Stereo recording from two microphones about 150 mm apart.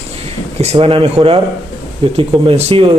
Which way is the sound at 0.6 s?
40° right (ahead or behind).